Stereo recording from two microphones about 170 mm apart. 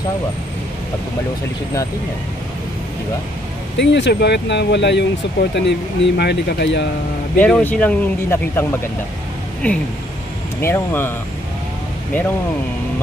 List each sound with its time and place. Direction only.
3.7 s speech: 90° left
7.3 s speech: 5° left (ahead or behind)
10.6 s speech: 15° left (ahead or behind)